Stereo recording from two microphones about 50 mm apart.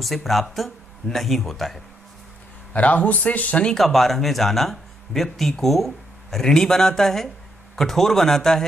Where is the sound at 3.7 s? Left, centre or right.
Centre.